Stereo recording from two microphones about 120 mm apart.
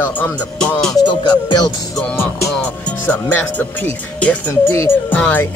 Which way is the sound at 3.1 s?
15° left (ahead or behind).